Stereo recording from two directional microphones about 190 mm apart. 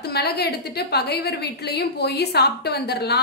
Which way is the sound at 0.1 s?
60° left (ahead or behind).